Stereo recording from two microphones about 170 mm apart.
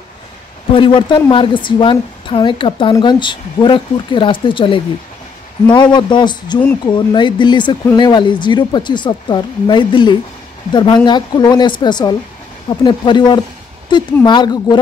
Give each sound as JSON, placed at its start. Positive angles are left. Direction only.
{"t": 0.7, "sound": "a woman's voice", "side_deg": 30}